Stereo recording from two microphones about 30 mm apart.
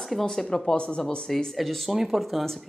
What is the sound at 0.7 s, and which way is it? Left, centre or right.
Speech, left.